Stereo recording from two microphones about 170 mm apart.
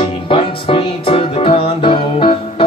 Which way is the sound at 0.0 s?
35° left (ahead or behind).